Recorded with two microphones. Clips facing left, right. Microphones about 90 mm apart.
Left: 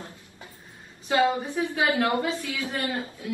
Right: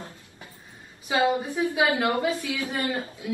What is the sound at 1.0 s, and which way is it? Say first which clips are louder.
A woman's voice: even; 15° right (ahead or behind).